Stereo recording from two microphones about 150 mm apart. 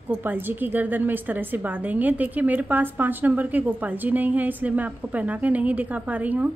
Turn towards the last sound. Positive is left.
turn(degrees=-10)  # may be behind; listen again after turning